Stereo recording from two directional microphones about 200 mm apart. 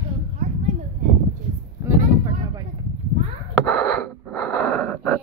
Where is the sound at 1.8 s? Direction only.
20° right (ahead or behind).